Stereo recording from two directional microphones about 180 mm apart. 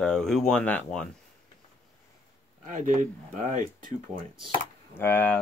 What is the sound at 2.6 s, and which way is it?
Speech, 45° right (ahead or behind).